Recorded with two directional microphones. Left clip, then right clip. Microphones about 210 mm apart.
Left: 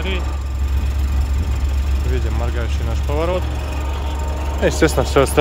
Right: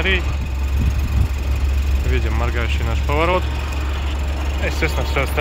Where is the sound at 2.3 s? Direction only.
5° right (ahead or behind).